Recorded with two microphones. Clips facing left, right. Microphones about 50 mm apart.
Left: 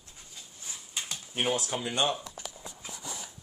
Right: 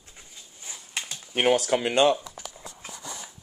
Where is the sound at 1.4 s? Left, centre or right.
Right.